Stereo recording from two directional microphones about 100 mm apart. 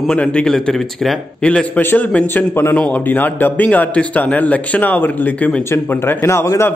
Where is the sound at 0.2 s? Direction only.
10° left (ahead or behind).